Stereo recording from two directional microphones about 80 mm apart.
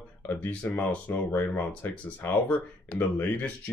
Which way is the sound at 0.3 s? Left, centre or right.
Left.